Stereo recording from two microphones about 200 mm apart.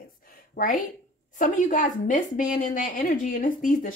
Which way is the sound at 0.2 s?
45° left (ahead or behind).